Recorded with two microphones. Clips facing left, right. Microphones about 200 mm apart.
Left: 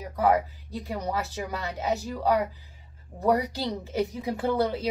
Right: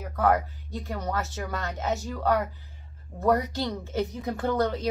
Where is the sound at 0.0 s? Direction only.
15° left (ahead or behind).